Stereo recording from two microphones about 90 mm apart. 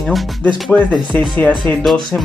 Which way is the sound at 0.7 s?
15° left (ahead or behind).